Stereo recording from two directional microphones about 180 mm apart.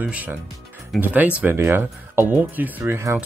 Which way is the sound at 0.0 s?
10° right (ahead or behind).